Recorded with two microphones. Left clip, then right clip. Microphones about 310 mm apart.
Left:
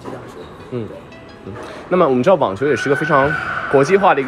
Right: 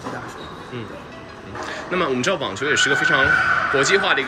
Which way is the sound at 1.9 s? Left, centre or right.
Centre.